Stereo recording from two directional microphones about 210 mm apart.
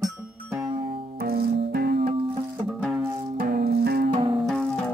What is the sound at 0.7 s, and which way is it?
Music, 25° right (ahead or behind).